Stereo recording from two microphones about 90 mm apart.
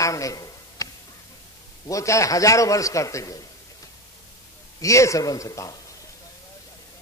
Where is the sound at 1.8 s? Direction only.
35° left (ahead or behind).